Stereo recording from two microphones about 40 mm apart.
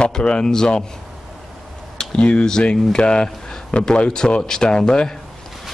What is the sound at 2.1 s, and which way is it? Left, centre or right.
Speech, left.